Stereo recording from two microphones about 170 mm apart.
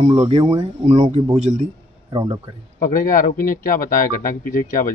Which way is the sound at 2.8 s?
55° left (ahead or behind).